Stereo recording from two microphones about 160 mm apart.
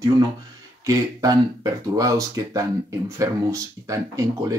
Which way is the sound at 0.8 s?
20° right (ahead or behind).